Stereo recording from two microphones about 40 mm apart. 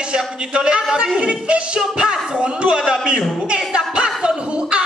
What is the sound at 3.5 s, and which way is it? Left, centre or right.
Music, right.